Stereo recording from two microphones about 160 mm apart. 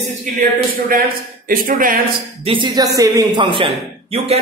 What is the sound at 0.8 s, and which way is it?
Speech, 65° right (ahead or behind).